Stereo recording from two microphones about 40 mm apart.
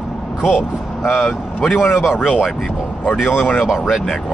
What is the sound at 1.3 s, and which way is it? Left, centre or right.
Speech, left.